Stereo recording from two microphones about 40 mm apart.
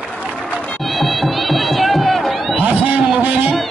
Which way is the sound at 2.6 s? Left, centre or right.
Right.